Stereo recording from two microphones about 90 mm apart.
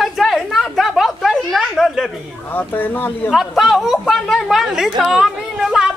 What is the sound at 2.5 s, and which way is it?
Speech, 20° left (ahead or behind).